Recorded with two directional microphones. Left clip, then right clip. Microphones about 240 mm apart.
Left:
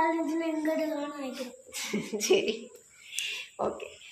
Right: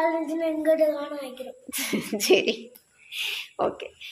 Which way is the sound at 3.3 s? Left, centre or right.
Right.